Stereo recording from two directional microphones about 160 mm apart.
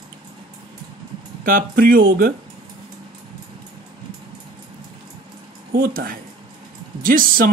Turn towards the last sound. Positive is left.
turn(degrees=-65)  # may be behind; listen again after turning